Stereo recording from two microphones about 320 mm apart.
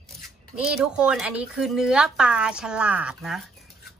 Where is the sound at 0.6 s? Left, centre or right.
Centre.